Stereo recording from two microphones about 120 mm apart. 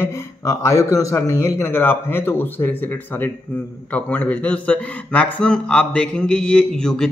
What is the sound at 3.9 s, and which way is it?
Speech, 10° left (ahead or behind).